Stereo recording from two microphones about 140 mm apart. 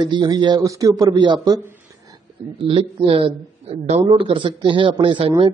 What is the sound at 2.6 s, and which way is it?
Speech, 40° right (ahead or behind).